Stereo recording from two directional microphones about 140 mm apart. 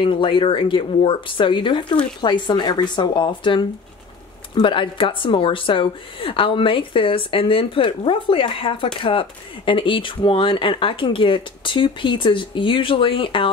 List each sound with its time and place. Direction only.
0.0 s a woman's voice: 35° left (ahead or behind)